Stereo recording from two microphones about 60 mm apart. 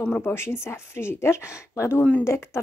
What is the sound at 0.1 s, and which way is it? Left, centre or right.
Speech, left.